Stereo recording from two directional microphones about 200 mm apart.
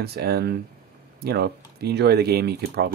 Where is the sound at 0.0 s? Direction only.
50° right (ahead or behind).